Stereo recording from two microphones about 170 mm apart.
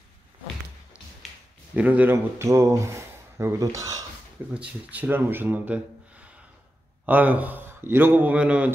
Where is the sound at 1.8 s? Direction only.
10° right (ahead or behind).